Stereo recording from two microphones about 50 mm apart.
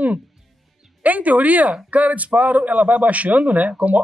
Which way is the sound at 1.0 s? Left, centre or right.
Right.